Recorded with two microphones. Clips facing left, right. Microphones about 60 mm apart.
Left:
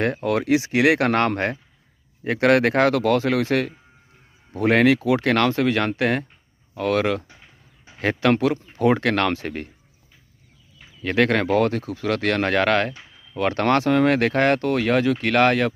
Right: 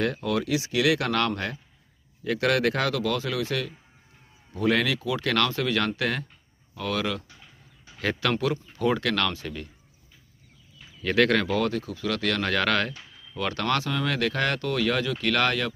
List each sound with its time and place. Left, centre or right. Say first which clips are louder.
0.0 s speech: left 4 dB; left
7.2 s a sound: left 2 dB; left
8.7 s speech: left 6 dB; left
9.3 s speech: left 8 dB; left
10.8 s speech: left 2 dB; centre
12.9 s a sound: left 2 dB; centre
13.4 s speech: left 7 dB; left